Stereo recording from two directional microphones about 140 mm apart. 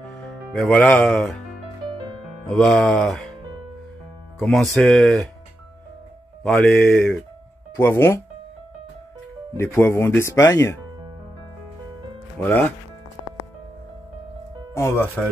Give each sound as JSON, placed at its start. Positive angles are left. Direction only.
{"t": 0.5, "sound": "speech", "side_deg": 5}
{"t": 2.4, "sound": "speech", "side_deg": 5}
{"t": 4.4, "sound": "speech", "side_deg": 5}
{"t": 6.4, "sound": "speech", "side_deg": 5}
{"t": 7.7, "sound": "speech", "side_deg": 15}
{"t": 9.6, "sound": "speech", "side_deg": 20}
{"t": 12.4, "sound": "speech", "side_deg": 10}